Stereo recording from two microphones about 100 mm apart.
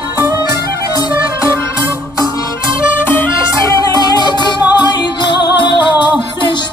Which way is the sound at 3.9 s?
45° left (ahead or behind).